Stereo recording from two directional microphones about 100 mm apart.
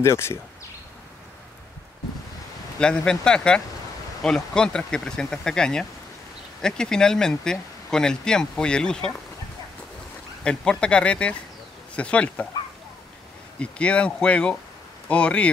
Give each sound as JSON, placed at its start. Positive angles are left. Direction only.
{"t": 0.0, "sound": "speech", "side_deg": 25}
{"t": 2.8, "sound": "speech", "side_deg": 10}
{"t": 10.4, "sound": "speech", "side_deg": 10}
{"t": 13.6, "sound": "speech", "side_deg": 10}